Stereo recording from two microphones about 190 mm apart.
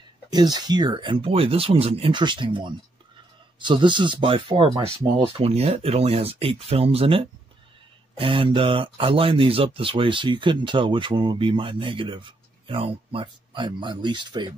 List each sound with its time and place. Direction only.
0.3 s speech: 20° right (ahead or behind)